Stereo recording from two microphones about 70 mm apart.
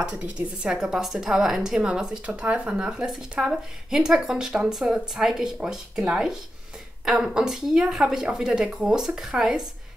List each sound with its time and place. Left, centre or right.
0.1 s speech: centre
1.8 s speech: centre
7.3 s speech: centre